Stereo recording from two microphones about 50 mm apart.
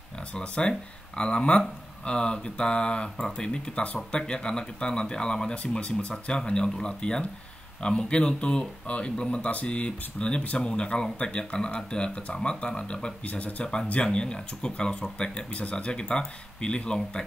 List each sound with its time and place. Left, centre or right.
0.3 s speech: centre
13.3 s speech: left
14.0 s speech: centre